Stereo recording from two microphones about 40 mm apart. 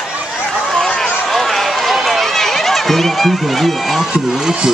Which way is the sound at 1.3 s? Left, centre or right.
Centre.